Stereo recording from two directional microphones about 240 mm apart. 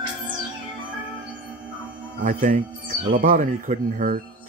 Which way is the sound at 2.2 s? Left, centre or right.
Right.